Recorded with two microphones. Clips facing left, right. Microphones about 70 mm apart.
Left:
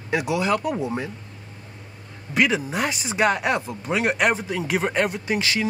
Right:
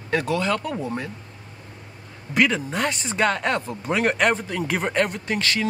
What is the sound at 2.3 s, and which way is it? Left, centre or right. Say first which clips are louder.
A man's voice: even; centre.